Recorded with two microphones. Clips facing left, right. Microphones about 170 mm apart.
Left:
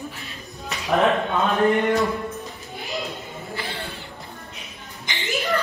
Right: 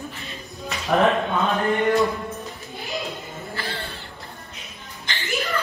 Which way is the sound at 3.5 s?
15° left (ahead or behind).